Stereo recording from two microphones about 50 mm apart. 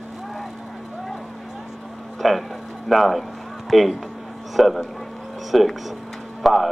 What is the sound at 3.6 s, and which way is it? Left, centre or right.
A man's voice, centre.